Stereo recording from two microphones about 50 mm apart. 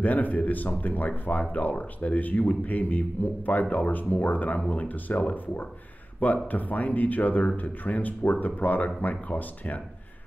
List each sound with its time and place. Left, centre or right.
0.0 s speech: left